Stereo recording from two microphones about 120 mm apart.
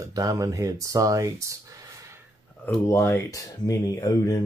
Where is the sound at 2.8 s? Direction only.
25° left (ahead or behind).